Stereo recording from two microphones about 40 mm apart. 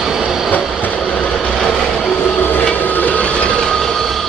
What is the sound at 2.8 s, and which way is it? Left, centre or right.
Train, left.